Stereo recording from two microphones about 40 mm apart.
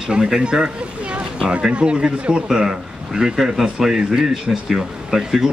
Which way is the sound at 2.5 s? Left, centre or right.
Centre.